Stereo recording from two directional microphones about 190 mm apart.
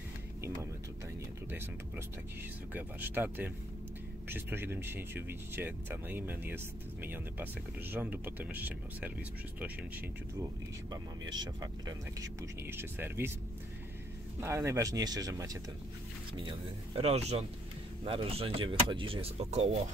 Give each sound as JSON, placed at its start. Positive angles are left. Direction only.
{"t": 2.7, "sound": "speech", "side_deg": -10}
{"t": 10.9, "sound": "speech", "side_deg": -20}
{"t": 14.4, "sound": "speech", "side_deg": -15}